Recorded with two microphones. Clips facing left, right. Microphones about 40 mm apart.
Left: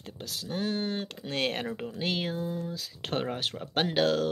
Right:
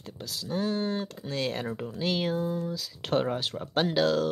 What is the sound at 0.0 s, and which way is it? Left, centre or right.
Speech, left.